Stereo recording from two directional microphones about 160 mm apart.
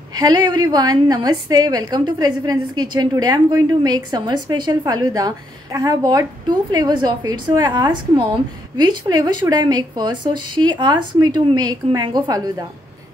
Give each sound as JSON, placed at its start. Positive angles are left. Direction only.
{"t": 0.1, "sound": "a woman's voice", "side_deg": -25}